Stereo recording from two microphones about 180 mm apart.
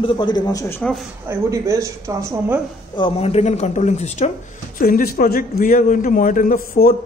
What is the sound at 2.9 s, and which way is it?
A woman's voice, 30° left (ahead or behind).